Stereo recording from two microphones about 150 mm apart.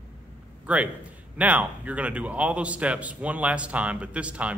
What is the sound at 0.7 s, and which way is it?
A man's voice, 10° right (ahead or behind).